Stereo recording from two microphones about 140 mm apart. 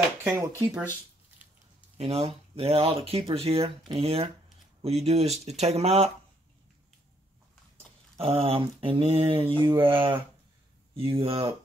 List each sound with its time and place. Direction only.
0.2 s speech: 15° right (ahead or behind)
2.0 s speech: 45° right (ahead or behind)
7.7 s speech: 45° right (ahead or behind)
9.5 s mantra: 35° right (ahead or behind)
11.0 s speech: 45° right (ahead or behind)